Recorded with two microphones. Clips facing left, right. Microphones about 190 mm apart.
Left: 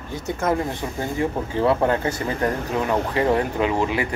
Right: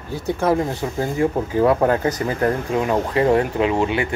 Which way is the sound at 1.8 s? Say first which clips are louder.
Right 3 dB; 35° right (ahead or behind).